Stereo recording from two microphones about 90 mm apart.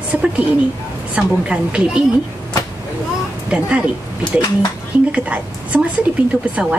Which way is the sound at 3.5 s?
10° right (ahead or behind).